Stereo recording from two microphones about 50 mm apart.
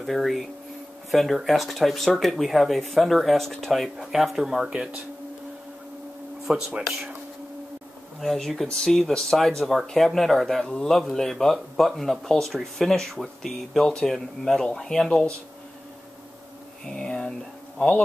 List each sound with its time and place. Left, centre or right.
0.0 s speech: centre
6.5 s speech: right
8.2 s speech: centre
16.8 s speech: centre